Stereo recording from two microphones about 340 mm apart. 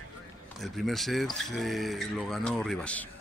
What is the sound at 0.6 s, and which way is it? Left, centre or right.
Speech, centre.